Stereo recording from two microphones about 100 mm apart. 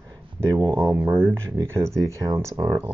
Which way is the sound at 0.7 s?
25° right (ahead or behind).